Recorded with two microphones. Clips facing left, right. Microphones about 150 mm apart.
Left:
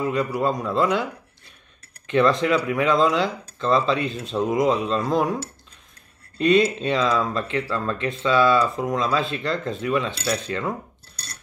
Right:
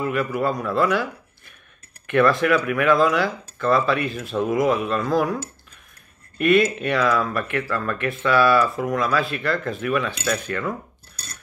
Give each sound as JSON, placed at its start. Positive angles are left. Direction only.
{"t": 0.0, "sound": "speech", "side_deg": 20}
{"t": 2.0, "sound": "speech", "side_deg": 20}